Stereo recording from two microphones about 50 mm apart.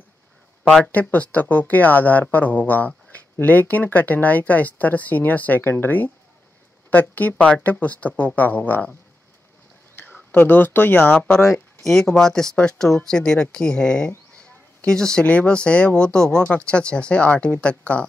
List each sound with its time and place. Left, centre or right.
0.7 s speech: centre
0.9 s speech: left
5.6 s speech: left
9.9 s speech: left
11.5 s speech: centre
15.2 s speech: left